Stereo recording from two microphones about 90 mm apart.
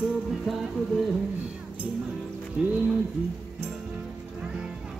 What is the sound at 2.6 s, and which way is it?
Speech, 10° right (ahead or behind).